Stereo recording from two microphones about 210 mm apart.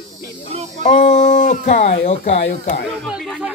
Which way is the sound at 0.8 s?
30° left (ahead or behind).